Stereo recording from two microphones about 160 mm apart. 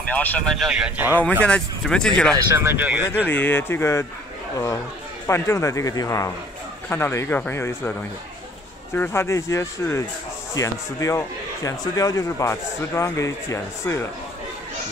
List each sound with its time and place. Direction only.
0.1 s speech: 10° left (ahead or behind); by 1.2 s 10° right (ahead or behind)
1.4 s speech: 5° left (ahead or behind)
2.3 s speech: 15° right (ahead or behind)
3.3 s speech: 10° left (ahead or behind)
5.2 s speech: 15° left (ahead or behind)
8.9 s speech: 15° left (ahead or behind)